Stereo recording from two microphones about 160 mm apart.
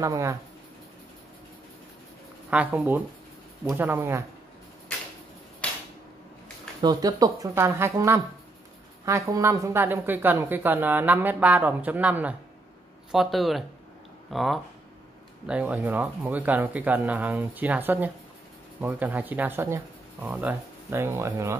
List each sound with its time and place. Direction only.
0.0 s speech: 20° right (ahead or behind)
2.5 s a woman's voice: 10° right (ahead or behind)
6.8 s a woman's voice: 25° right (ahead or behind)